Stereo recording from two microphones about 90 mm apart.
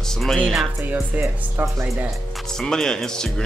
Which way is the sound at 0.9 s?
20° right (ahead or behind).